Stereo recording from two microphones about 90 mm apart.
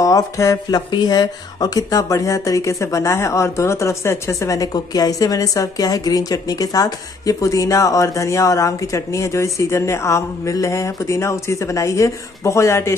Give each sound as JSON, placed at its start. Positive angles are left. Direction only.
{"t": 0.0, "sound": "speech", "side_deg": 40}